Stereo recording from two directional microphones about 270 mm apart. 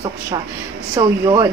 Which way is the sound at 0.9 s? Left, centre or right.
Centre.